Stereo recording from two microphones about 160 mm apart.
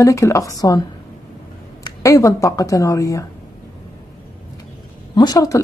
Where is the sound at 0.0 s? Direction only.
20° left (ahead or behind).